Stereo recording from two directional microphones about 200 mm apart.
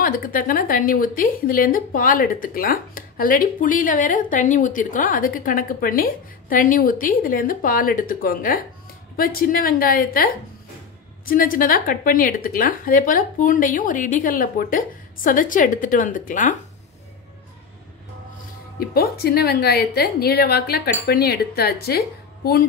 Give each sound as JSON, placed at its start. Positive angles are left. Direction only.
{"t": 0.0, "sound": "a woman's voice", "side_deg": 45}
{"t": 18.8, "sound": "a woman's voice", "side_deg": 50}